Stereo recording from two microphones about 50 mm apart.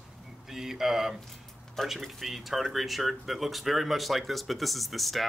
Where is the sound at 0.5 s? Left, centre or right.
Centre.